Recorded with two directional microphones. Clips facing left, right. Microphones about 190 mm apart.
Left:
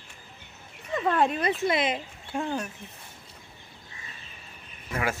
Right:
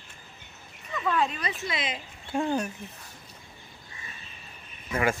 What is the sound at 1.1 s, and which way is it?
Speech, 55° left (ahead or behind).